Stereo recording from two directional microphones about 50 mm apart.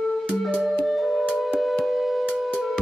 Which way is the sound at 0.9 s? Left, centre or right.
Centre.